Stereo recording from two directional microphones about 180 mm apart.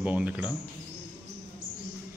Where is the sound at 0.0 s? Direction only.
10° right (ahead or behind).